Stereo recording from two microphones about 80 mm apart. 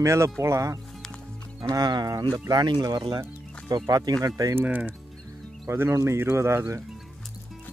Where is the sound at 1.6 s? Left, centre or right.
Right.